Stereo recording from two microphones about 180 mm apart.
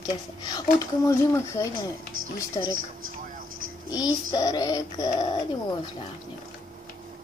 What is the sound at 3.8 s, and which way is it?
Synthetic singing, 20° left (ahead or behind).